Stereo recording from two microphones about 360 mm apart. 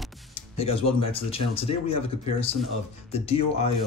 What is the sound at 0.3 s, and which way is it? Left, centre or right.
Music, centre.